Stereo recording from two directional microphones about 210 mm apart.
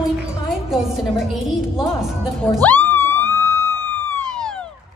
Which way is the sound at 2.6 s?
10° left (ahead or behind).